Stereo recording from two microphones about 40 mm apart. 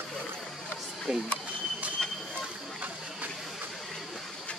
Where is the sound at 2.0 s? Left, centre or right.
Centre.